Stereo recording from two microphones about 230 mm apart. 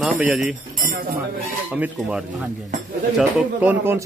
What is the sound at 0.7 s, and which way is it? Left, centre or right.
Speech, right.